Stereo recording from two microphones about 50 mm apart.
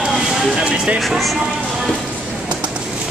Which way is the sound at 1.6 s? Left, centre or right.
Centre.